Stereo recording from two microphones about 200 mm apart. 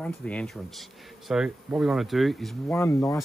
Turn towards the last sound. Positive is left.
turn(degrees=15)  # may be behind; listen again after turning